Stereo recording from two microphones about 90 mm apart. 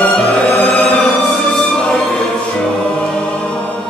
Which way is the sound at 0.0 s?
15° left (ahead or behind).